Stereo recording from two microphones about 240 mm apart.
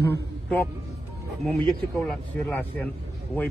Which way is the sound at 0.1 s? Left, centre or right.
Centre.